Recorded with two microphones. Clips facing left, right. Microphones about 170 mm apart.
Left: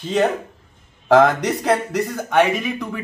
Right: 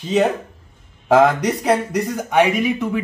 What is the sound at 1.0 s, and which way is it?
Speech, 10° right (ahead or behind).